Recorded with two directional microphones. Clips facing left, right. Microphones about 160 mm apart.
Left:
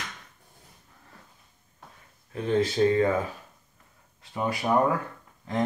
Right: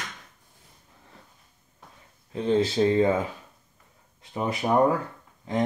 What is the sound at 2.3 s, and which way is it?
Speech, 25° right (ahead or behind).